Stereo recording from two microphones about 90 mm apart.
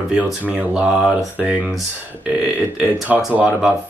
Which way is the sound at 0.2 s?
10° right (ahead or behind).